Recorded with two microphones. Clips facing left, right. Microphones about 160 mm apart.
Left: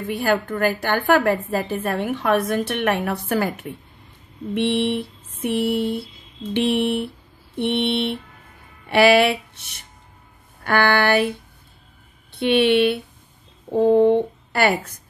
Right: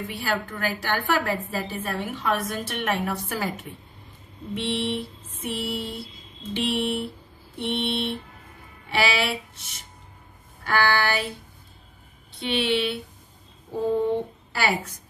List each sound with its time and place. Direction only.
0.1 s a woman's voice: 50° left (ahead or behind)
4.6 s a woman's voice: 60° left (ahead or behind)
10.6 s a woman's voice: 60° left (ahead or behind)
12.4 s a woman's voice: 60° left (ahead or behind)